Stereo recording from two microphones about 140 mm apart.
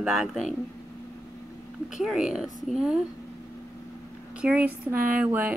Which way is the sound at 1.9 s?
5° right (ahead or behind).